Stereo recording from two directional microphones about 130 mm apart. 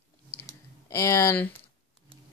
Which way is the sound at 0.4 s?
20° left (ahead or behind).